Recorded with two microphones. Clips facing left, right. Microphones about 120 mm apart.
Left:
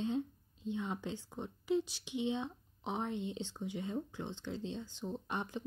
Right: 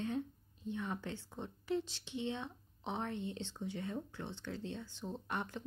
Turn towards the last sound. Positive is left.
turn(degrees=15)  # may be behind; listen again after turning